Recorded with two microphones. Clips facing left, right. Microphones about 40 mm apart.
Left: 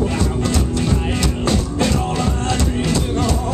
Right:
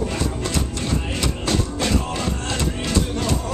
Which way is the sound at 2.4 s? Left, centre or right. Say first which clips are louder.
Left 5 dB; centre.